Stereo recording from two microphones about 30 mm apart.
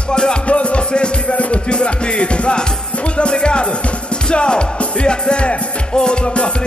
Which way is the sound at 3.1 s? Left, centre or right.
Left.